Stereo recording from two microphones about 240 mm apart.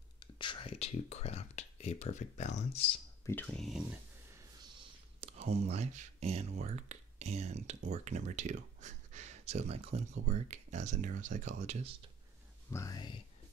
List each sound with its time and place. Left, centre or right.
0.2 s a sound: centre
3.3 s speech: centre
5.2 s speech: right
12.7 s speech: centre